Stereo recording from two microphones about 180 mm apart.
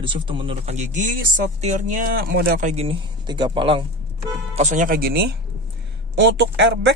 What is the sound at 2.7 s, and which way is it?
Speech, 30° right (ahead or behind).